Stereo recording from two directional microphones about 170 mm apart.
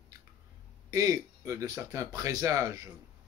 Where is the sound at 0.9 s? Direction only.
20° right (ahead or behind).